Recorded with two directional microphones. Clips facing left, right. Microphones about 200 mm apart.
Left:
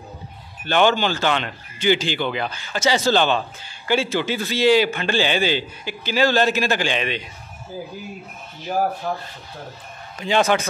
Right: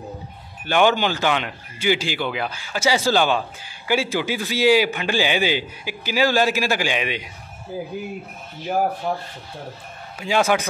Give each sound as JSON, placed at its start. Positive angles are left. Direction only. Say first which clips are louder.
{"t": 0.7, "sound": "speech", "louder": "even", "side_deg": -10}
{"t": 9.0, "sound": "speech", "louder": "right 1 dB", "side_deg": -15}